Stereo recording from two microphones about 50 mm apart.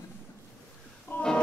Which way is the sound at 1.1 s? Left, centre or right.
Left.